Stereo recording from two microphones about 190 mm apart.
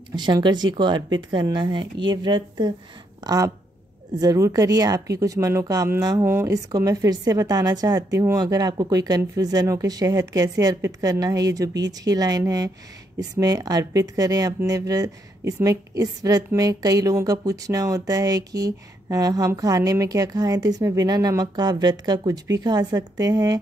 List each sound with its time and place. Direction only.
0.1 s speech: 25° right (ahead or behind)